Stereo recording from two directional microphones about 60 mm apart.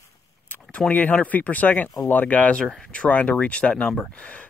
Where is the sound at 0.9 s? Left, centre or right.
Left.